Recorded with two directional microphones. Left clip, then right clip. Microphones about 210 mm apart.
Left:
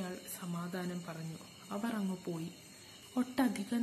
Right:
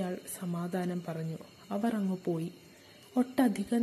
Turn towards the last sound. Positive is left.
turn(degrees=-25)  # may be behind; listen again after turning